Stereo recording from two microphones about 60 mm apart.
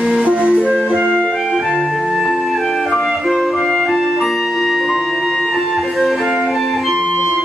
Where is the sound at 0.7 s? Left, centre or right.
Centre.